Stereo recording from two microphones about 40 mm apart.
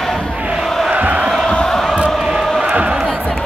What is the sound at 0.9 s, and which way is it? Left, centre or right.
Crowd, right.